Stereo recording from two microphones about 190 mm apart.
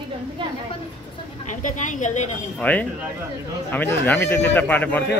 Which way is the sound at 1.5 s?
40° left (ahead or behind).